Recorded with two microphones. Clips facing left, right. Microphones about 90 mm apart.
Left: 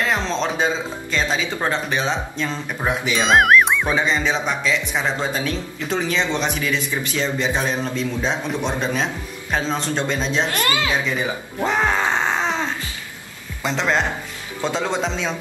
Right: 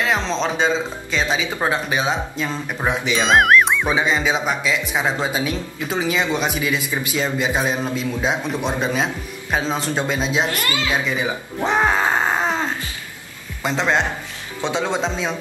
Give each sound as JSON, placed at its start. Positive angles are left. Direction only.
{"t": 0.0, "sound": "speech", "side_deg": 0}
{"t": 10.5, "sound": "a woman's voice", "side_deg": 35}
{"t": 11.1, "sound": "groan", "side_deg": -5}
{"t": 13.6, "sound": "a man's voice", "side_deg": -5}
{"t": 14.6, "sound": "speech", "side_deg": -15}